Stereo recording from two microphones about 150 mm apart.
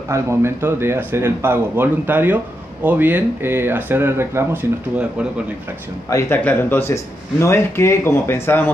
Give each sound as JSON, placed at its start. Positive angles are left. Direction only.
{"t": 0.1, "sound": "speech", "side_deg": -15}
{"t": 6.0, "sound": "a man's voice", "side_deg": 20}